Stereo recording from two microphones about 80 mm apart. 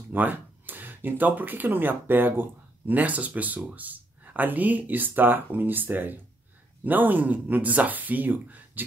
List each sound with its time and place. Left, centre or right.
0.1 s speech: right